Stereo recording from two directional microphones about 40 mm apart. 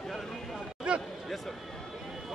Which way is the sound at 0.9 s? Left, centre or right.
Right.